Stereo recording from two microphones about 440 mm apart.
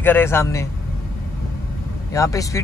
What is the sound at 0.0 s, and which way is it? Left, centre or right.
Speech, centre.